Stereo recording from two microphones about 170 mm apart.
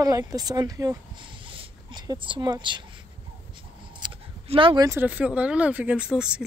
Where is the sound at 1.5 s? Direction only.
30° right (ahead or behind).